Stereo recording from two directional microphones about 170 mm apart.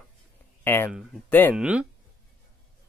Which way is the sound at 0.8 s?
5° right (ahead or behind).